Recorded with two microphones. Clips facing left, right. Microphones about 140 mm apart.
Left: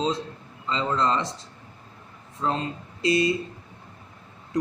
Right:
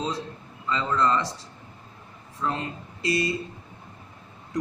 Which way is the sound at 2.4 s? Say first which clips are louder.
Left 2 dB; 25° left (ahead or behind).